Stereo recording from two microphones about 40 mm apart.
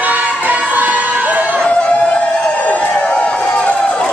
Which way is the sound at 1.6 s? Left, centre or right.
Left.